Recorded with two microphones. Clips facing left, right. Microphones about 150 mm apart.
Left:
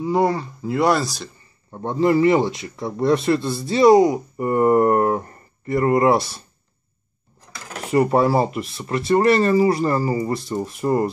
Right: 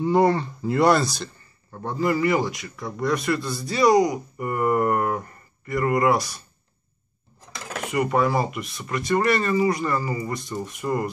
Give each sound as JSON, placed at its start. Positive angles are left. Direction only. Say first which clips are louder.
{"t": 0.0, "sound": "speech", "louder": "even", "side_deg": 0}
{"t": 1.7, "sound": "speech", "louder": "left 5 dB", "side_deg": 20}
{"t": 7.8, "sound": "speech", "louder": "left 5 dB", "side_deg": 35}